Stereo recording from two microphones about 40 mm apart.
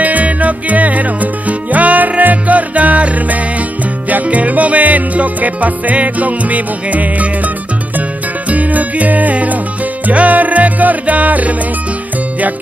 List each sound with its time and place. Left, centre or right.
0.0 s music: right